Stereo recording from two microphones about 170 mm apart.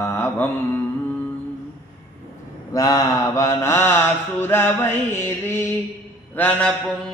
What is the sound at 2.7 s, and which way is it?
Mantra, 25° left (ahead or behind).